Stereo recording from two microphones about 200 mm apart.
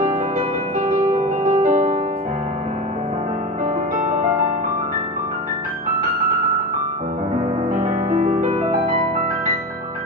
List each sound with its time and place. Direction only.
1.6 s music: 35° right (ahead or behind)
7.8 s music: 40° right (ahead or behind)